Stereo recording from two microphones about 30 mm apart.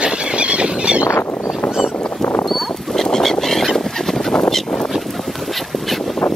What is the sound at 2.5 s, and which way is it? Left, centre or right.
Rodents, centre.